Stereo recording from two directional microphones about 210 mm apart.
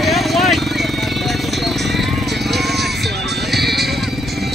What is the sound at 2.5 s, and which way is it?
Music, centre (ahead or behind).